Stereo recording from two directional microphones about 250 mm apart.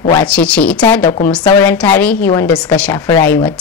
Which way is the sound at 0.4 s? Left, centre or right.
Centre.